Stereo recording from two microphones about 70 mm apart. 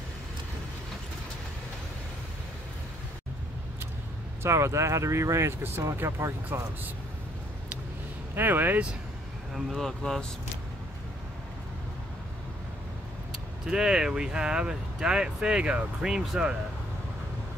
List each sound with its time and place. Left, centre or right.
4.4 s speech: right
8.4 s speech: right
9.5 s speech: centre
13.7 s speech: centre